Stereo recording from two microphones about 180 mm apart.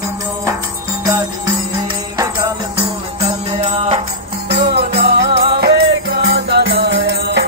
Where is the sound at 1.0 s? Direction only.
20° right (ahead or behind).